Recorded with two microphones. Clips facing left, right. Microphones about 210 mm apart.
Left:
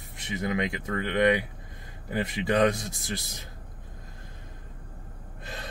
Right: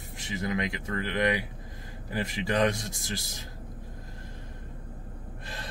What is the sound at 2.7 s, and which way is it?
Speech, 25° right (ahead or behind).